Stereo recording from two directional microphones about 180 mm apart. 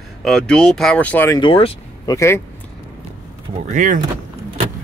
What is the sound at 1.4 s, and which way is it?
Speech, 30° left (ahead or behind).